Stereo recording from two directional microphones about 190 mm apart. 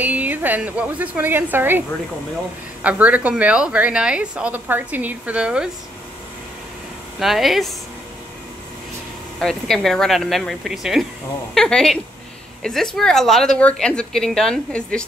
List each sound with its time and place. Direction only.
0.0 s a woman's voice: 10° right (ahead or behind)
2.8 s a woman's voice: 5° right (ahead or behind)
7.2 s a woman's voice: centre (ahead or behind)
9.4 s a woman's voice: centre (ahead or behind)